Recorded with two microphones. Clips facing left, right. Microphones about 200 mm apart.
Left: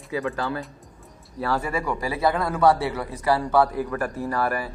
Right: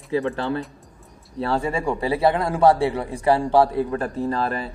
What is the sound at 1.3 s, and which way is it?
A man's voice, 25° right (ahead or behind).